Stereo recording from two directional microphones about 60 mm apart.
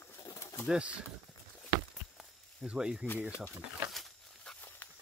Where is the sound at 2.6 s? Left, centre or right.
Centre.